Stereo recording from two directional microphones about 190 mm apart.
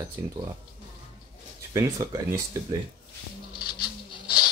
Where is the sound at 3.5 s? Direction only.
25° left (ahead or behind).